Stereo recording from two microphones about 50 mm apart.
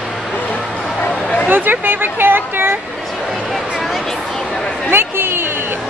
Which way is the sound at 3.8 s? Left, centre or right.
Centre.